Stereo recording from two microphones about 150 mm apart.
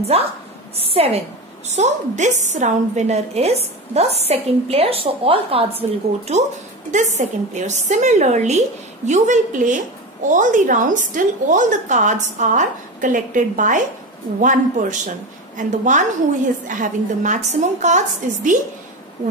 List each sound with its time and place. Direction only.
0.1 s a woman's voice: 40° right (ahead or behind)